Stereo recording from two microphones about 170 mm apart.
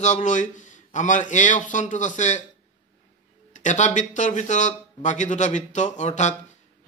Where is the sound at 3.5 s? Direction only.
45° left (ahead or behind).